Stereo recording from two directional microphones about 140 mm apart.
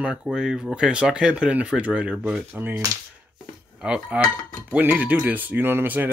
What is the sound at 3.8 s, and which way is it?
Speech, 5° right (ahead or behind).